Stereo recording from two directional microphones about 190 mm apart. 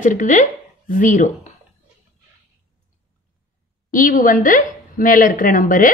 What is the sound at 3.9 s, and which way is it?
A woman's voice, 45° left (ahead or behind).